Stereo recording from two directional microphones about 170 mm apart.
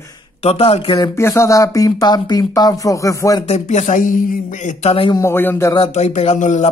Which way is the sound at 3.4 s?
45° left (ahead or behind).